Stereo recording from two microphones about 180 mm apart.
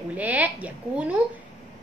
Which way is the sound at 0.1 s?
10° right (ahead or behind).